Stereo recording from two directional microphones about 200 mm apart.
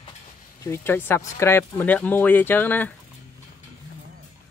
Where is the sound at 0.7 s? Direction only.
10° left (ahead or behind).